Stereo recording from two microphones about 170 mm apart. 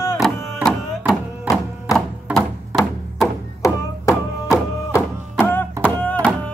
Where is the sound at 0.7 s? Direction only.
5° right (ahead or behind).